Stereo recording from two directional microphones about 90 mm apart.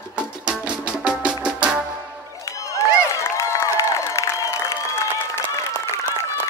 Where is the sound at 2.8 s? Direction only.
35° left (ahead or behind).